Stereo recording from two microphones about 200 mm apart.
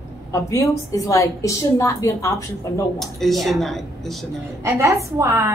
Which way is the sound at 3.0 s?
Centre (ahead or behind).